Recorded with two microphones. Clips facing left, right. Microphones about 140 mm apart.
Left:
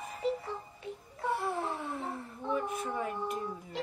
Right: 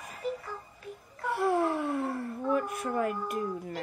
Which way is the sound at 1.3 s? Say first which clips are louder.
Right 11 dB; 75° right (ahead or behind).